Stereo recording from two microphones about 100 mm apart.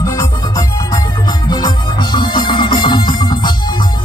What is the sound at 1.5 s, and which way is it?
Music, 45° left (ahead or behind).